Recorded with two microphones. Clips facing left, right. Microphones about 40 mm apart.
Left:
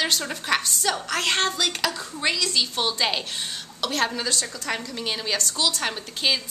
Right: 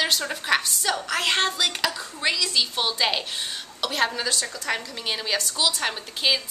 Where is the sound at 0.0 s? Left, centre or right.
Centre.